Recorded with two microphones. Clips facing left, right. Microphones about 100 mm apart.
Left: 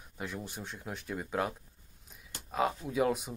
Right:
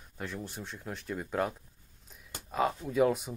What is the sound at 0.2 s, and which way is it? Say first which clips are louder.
Speech: right 1 dB; 5° left (ahead or behind).